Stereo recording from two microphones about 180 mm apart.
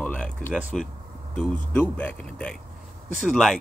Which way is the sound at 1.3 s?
5° left (ahead or behind).